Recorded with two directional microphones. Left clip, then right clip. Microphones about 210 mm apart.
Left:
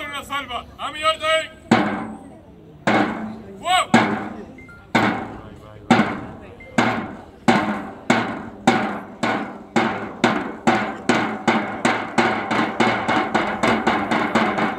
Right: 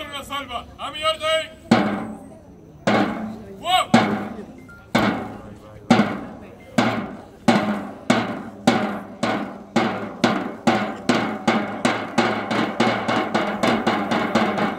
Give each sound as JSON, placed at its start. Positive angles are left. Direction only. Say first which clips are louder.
{"t": 0.0, "sound": "speech", "louder": "left 2 dB", "side_deg": -20}
{"t": 2.9, "sound": "music", "louder": "left 1 dB", "side_deg": -30}
{"t": 4.9, "sound": "hammer", "louder": "left 2 dB", "side_deg": -30}
{"t": 5.9, "sound": "music", "louder": "left 1 dB", "side_deg": -30}
{"t": 6.8, "sound": "hammer", "louder": "left 1 dB", "side_deg": -35}